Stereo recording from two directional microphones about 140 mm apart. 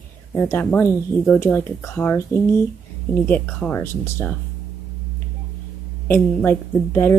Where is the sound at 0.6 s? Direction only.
10° left (ahead or behind).